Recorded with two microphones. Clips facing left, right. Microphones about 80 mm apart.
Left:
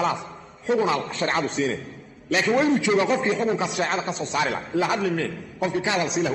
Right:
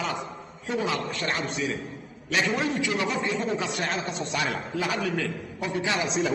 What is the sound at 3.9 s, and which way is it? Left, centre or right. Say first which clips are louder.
Speech: left 4 dB; left.